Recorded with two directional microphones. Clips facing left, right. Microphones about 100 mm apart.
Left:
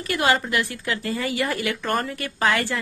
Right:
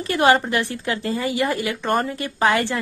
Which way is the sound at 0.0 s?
30° right (ahead or behind).